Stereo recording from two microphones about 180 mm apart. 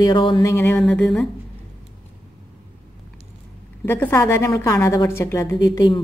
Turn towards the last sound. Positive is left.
turn(degrees=20)  # may be behind; listen again after turning